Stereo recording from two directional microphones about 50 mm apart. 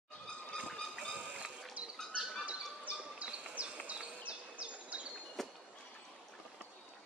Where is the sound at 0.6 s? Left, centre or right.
Centre.